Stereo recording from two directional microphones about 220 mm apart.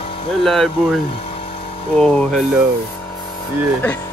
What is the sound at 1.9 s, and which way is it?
Speech, 5° left (ahead or behind).